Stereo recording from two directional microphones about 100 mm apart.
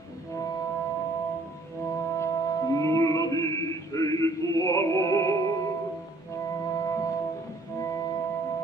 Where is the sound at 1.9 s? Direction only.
30° left (ahead or behind).